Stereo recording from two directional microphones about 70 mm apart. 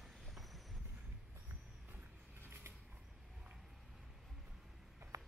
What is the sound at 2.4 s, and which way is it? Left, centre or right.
Mechanisms, right.